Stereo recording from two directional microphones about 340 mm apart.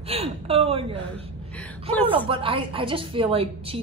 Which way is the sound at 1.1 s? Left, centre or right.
Centre.